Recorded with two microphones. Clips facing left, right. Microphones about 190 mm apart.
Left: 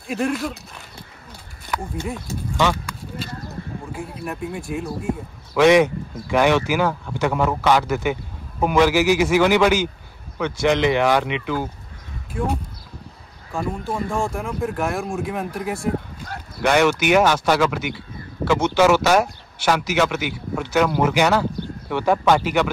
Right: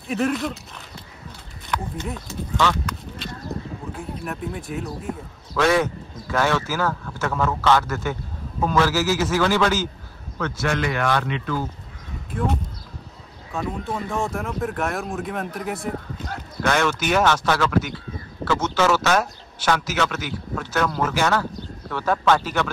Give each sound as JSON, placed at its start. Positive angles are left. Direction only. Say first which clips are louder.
{"t": 0.1, "sound": "speech", "louder": "even", "side_deg": 0}
{"t": 1.7, "sound": "speech", "louder": "left 1 dB", "side_deg": 5}
{"t": 5.0, "sound": "speech", "louder": "left 5 dB", "side_deg": 15}
{"t": 14.0, "sound": "speech", "louder": "left 2 dB", "side_deg": 0}
{"t": 16.6, "sound": "speech", "louder": "left 5 dB", "side_deg": 15}